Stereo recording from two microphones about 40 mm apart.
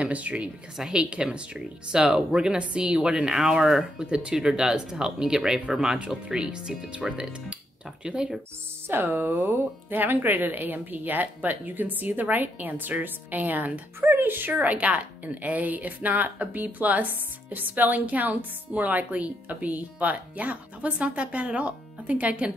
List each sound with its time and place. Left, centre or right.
0.0 s speech: right
0.9 s speech: right
5.9 s speech: right
6.3 s speech: centre
8.2 s speech: centre
8.8 s speech: right
14.5 s speech: right